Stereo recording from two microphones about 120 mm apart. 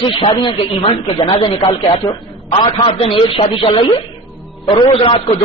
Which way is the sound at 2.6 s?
45° left (ahead or behind).